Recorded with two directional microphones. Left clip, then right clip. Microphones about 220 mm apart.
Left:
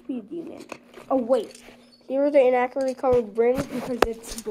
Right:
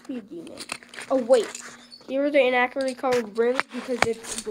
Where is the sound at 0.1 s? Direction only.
20° right (ahead or behind).